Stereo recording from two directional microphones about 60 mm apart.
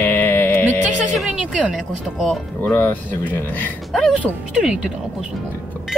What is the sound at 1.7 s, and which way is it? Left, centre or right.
Speech, centre.